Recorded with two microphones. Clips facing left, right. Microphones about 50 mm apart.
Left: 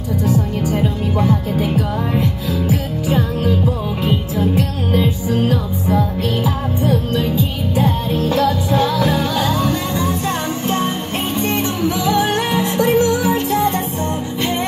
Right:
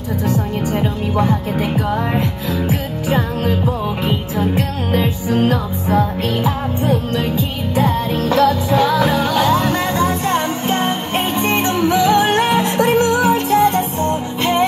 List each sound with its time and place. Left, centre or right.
0.7 s music: right